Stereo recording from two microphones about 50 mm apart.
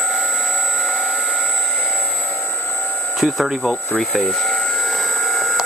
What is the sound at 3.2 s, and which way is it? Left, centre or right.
Speech, centre.